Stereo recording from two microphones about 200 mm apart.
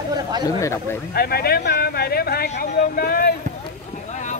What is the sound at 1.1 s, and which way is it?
Speech, 50° left (ahead or behind).